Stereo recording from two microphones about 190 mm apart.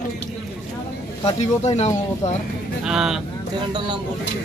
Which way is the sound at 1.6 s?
35° left (ahead or behind).